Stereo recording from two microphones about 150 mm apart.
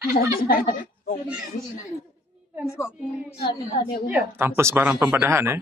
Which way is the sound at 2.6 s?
15° left (ahead or behind).